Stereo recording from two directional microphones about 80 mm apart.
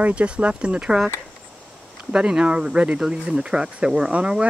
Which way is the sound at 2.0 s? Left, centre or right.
Centre.